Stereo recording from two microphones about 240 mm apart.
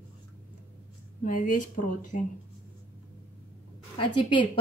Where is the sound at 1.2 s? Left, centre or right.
Left.